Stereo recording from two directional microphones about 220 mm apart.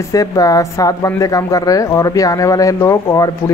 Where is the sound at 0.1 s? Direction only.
15° left (ahead or behind).